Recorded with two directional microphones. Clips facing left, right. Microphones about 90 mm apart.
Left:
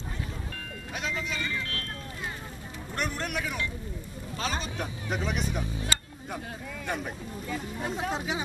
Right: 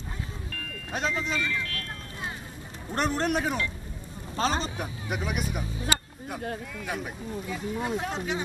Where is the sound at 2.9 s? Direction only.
35° right (ahead or behind).